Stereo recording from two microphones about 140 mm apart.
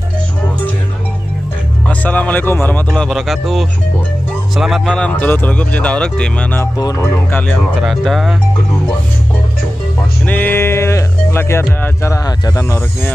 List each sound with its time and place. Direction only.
1.9 s speech: 10° left (ahead or behind)
6.8 s speech: 25° left (ahead or behind); by 8.4 s centre (ahead or behind)
10.2 s speech: 10° left (ahead or behind)